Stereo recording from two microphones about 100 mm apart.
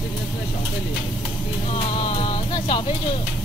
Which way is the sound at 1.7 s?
75° left (ahead or behind).